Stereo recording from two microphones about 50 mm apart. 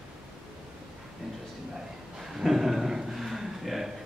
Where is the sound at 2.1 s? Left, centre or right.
Centre.